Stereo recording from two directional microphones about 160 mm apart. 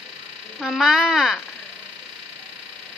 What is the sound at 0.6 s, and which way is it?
Speech, centre (ahead or behind).